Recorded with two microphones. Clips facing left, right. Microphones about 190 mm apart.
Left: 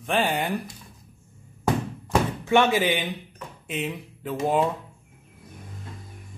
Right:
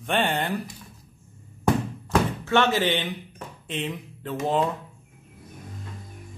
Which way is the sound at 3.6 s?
10° left (ahead or behind).